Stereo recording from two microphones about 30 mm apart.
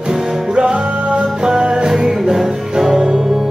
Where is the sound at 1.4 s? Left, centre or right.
Right.